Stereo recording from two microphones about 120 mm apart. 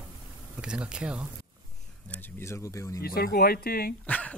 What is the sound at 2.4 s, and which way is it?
Speech, 25° left (ahead or behind).